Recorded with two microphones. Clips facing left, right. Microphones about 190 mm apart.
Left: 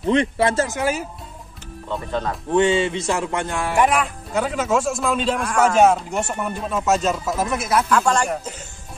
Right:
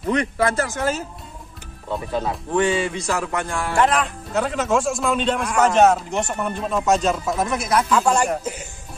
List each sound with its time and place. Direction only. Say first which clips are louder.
0.0 s speech: left 2 dB; 25° left (ahead or behind)
0.7 s music: left 1 dB; 10° left (ahead or behind)
1.9 s speech: right 1 dB; 10° right (ahead or behind)
2.5 s music: left 3 dB; 25° left (ahead or behind); by 5.9 s 5° left (ahead or behind)
5.9 s speech: even; 5° left (ahead or behind)